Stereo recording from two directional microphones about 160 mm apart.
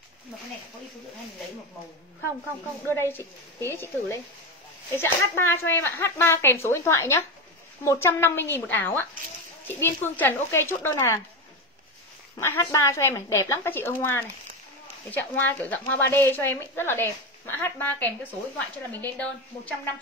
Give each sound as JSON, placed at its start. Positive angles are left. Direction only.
{"t": 2.9, "sound": "speech", "side_deg": 15}
{"t": 12.4, "sound": "speech", "side_deg": 20}